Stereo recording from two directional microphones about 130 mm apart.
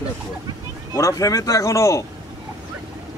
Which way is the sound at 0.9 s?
25° left (ahead or behind).